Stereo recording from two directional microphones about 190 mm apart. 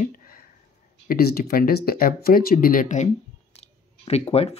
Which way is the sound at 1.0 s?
50° left (ahead or behind).